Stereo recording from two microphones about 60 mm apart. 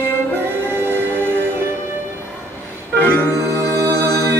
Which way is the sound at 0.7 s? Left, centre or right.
Right.